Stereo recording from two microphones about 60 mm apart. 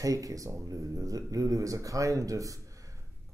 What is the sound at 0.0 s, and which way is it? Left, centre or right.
Speech, right.